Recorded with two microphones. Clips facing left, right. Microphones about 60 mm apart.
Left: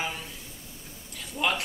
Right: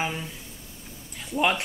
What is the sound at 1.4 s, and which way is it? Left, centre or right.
Speech, right.